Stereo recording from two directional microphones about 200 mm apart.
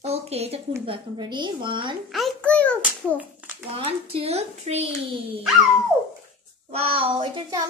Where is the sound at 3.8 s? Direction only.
30° right (ahead or behind).